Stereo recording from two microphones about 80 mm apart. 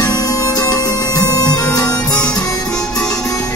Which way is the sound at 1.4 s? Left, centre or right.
Centre.